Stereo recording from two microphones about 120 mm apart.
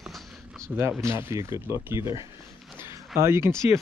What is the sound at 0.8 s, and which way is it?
Speech, 20° right (ahead or behind).